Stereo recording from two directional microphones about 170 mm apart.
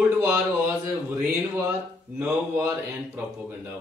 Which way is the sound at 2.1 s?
15° right (ahead or behind).